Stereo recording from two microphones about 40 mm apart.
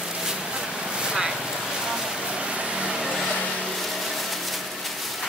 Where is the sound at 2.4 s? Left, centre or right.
Centre.